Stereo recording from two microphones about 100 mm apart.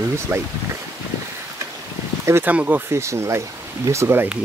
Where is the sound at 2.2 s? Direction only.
25° right (ahead or behind).